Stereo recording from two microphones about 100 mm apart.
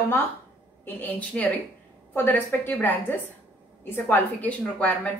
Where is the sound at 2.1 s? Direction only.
20° left (ahead or behind).